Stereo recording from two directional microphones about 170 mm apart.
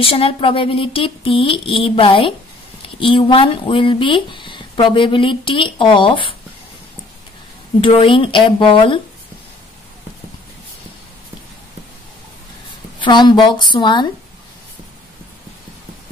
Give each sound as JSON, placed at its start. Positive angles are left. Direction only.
{"t": 0.0, "sound": "speech", "side_deg": 30}
{"t": 7.8, "sound": "speech", "side_deg": 30}
{"t": 13.0, "sound": "speech", "side_deg": 25}